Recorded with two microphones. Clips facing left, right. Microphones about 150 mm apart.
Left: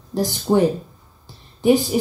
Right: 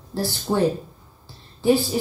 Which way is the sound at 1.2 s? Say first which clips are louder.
Left 3 dB; 15° left (ahead or behind).